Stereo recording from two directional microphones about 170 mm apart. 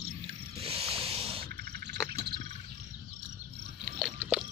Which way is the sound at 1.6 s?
70° right (ahead or behind).